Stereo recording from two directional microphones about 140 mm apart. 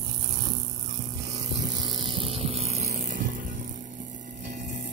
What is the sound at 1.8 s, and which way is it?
Vehicle, 35° right (ahead or behind).